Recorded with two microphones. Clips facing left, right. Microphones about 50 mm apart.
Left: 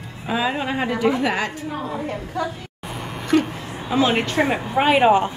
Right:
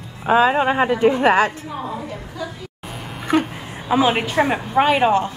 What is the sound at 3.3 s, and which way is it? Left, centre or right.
A woman's voice, centre.